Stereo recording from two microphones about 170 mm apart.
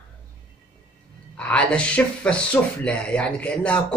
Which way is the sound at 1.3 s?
5° left (ahead or behind).